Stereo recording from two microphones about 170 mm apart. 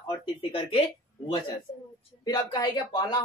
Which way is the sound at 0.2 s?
35° left (ahead or behind).